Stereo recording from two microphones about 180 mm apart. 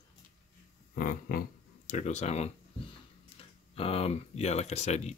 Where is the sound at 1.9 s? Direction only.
40° left (ahead or behind).